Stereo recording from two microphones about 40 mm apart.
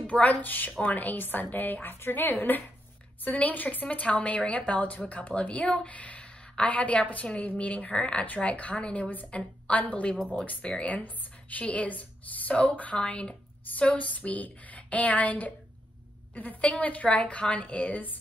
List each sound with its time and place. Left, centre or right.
0.0 s speech: left
0.4 s a woman's voice: left
5.9 s a sound: left
6.6 s a woman's voice: left
7.9 s speech: left
8.4 s a woman's voice: left
16.7 s a woman's voice: left
17.1 s a woman's voice: left